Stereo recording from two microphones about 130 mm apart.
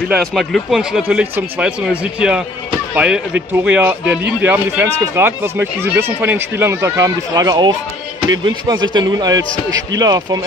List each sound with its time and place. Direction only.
0.2 s speech: 5° left (ahead or behind); by 10.4 s 30° right (ahead or behind)